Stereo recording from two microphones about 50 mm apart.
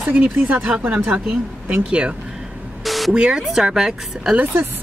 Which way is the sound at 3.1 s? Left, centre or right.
Centre.